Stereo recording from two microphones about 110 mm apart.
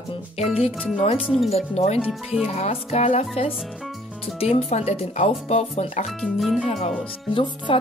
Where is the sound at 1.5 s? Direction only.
75° left (ahead or behind).